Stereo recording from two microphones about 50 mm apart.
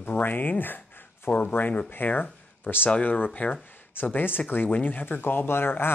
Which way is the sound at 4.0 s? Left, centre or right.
Left.